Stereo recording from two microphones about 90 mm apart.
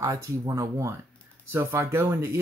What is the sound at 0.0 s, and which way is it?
Speech, 35° right (ahead or behind).